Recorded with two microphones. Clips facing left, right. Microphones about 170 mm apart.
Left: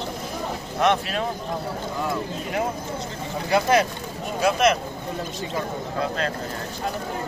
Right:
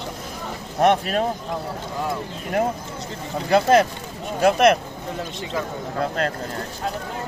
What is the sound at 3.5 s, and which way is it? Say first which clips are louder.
Speech: right 4 dB; 55° right (ahead or behind).